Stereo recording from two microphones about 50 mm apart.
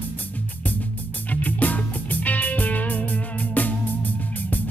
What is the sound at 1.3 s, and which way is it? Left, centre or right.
Music, left.